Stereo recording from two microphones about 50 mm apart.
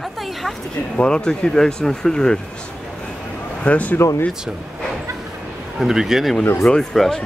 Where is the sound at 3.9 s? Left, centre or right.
Left.